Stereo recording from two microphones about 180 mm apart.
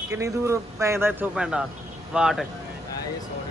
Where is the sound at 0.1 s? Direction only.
15° right (ahead or behind).